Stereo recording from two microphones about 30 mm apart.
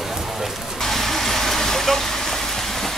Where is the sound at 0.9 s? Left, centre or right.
Centre.